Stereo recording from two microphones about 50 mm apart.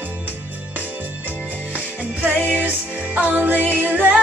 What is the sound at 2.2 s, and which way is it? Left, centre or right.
Music, right.